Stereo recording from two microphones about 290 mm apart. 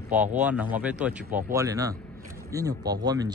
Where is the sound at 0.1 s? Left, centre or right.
Centre.